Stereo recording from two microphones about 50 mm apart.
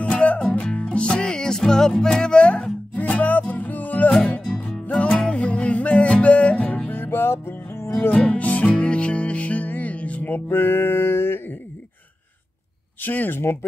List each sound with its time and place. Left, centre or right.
0.0 s music: left
2.9 s music: left
4.1 s music: centre
5.3 s music: left
6.9 s music: left
8.1 s music: left
13.0 s speech: left
13.4 s speech: left